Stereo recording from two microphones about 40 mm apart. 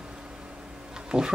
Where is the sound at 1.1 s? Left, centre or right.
Right.